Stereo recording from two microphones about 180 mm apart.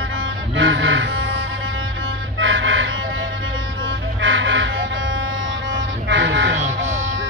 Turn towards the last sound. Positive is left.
turn(degrees=-80)